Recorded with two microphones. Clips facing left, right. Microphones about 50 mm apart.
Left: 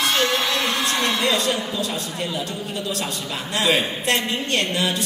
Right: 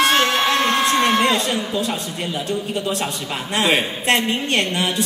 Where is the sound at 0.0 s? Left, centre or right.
Right.